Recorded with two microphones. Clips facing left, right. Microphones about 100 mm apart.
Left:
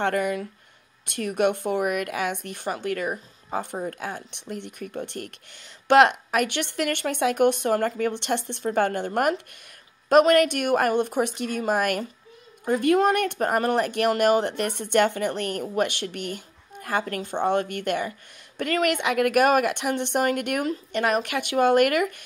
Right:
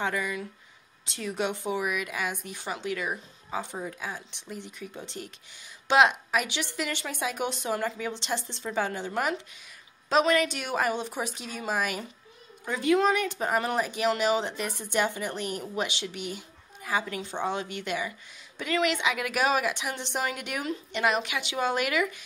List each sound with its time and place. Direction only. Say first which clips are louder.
0.0 s speech: left 6 dB; 60° left (ahead or behind)